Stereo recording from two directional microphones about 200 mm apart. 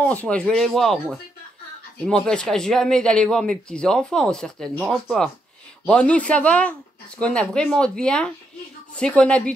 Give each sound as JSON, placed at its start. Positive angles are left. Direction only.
{"t": 0.0, "sound": "speech", "side_deg": 5}